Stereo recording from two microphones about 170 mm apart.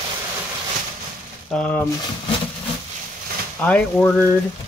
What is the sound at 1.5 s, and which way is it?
Speech, 10° left (ahead or behind).